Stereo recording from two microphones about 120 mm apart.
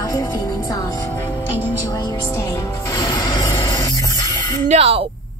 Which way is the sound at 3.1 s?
30° left (ahead or behind).